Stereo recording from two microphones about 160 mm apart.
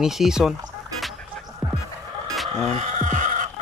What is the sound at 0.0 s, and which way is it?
Speech, centre (ahead or behind).